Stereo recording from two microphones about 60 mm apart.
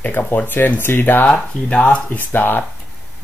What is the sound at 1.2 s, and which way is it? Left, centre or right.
Speech, centre.